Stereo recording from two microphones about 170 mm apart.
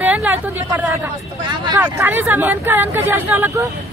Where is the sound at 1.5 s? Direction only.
25° right (ahead or behind).